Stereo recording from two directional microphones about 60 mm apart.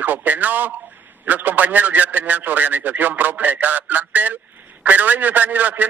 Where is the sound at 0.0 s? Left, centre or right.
Right.